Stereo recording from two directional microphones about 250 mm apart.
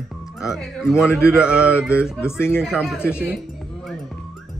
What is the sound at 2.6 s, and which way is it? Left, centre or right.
Speech, centre.